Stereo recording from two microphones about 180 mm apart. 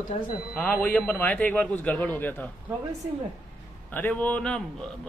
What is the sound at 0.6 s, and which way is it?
A man's voice, 5° left (ahead or behind).